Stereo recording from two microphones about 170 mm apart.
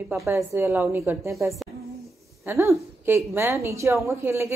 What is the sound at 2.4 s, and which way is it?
A woman's voice, 15° right (ahead or behind).